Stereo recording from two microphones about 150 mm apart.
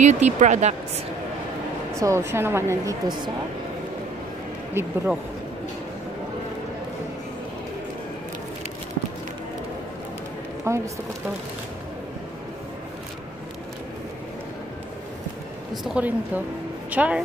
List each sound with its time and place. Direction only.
0.0 s speech: 50° right (ahead or behind)
2.0 s a woman's voice: 20° right (ahead or behind)
4.7 s speech: 10° right (ahead or behind)
10.7 s a woman's voice: 20° right (ahead or behind)
15.7 s speech: 5° right (ahead or behind)